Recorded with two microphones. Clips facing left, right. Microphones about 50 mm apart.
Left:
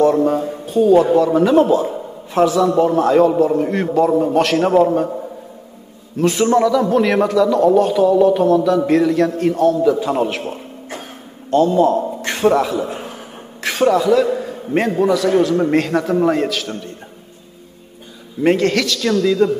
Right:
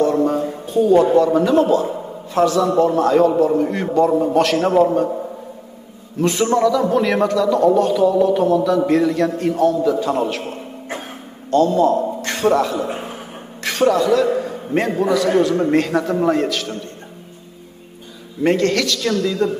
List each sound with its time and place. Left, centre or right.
0.0 s a sound: centre
1.1 s a man's voice: centre
6.1 s a man's voice: centre
11.5 s a man's voice: centre
12.8 s a sound: right
13.6 s a man's voice: centre
18.4 s a man's voice: centre